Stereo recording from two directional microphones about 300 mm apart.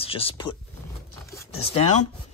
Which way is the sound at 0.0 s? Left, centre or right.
Centre.